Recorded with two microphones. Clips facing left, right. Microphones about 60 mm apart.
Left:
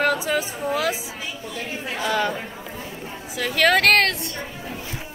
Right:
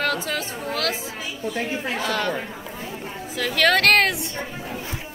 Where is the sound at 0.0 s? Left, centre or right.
Centre.